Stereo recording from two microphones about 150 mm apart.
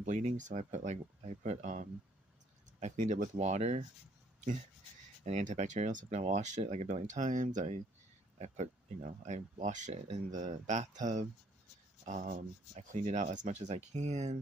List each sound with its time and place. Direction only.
0.0 s speech: 55° right (ahead or behind)
5.2 s speech: 50° right (ahead or behind)